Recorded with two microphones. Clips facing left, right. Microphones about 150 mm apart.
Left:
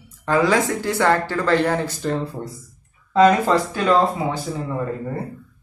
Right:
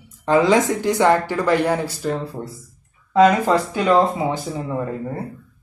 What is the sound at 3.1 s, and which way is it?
Speech, 15° right (ahead or behind).